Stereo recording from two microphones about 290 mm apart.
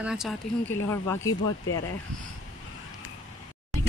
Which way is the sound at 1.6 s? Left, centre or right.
Left.